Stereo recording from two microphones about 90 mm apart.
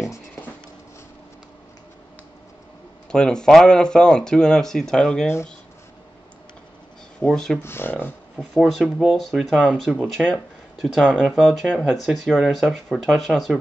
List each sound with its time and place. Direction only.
3.1 s speech: 10° left (ahead or behind)
7.2 s speech: 5° left (ahead or behind)
7.6 s speech: 25° left (ahead or behind)
8.7 s speech: 5° left (ahead or behind)